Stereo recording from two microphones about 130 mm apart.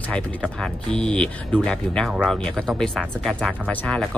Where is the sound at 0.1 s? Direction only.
10° left (ahead or behind).